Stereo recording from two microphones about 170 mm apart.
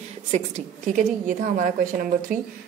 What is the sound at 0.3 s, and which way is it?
A woman's voice, 40° right (ahead or behind).